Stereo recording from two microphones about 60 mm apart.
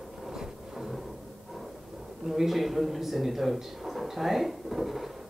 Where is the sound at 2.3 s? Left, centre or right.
Centre.